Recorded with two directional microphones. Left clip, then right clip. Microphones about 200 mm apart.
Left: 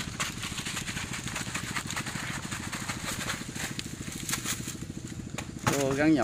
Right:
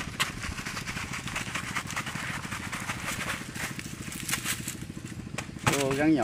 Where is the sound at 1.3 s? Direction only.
10° left (ahead or behind).